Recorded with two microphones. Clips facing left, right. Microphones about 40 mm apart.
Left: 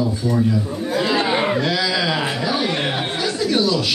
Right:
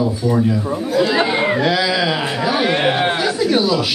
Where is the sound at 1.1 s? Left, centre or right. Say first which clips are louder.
Right 2 dB; centre.